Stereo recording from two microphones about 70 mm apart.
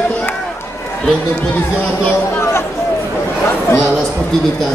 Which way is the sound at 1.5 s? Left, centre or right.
Left.